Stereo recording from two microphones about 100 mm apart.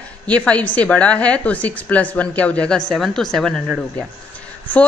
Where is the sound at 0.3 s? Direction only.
15° left (ahead or behind).